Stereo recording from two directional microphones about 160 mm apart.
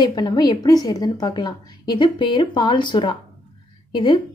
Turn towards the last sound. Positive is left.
turn(degrees=25)  # may be behind; listen again after turning